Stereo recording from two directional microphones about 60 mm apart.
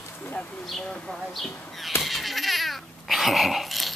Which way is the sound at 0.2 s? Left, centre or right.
Left.